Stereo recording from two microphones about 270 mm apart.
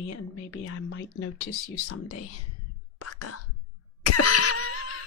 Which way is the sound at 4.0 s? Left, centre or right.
Left.